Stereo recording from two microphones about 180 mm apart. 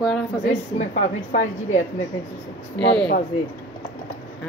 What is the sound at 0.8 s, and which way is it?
A woman's voice, 40° left (ahead or behind).